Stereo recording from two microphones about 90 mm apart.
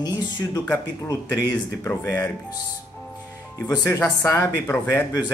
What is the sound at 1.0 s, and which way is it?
Speech, 30° left (ahead or behind).